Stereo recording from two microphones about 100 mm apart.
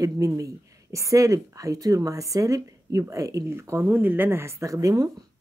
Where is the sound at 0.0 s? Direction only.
35° right (ahead or behind).